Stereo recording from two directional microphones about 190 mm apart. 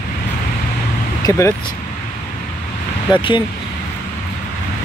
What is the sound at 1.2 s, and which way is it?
Speech, 20° left (ahead or behind).